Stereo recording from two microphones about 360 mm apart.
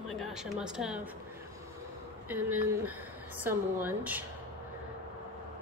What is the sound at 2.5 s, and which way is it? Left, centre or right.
Speech, right.